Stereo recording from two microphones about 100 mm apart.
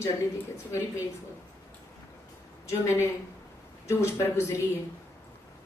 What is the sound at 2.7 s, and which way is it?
A woman's voice, 25° left (ahead or behind).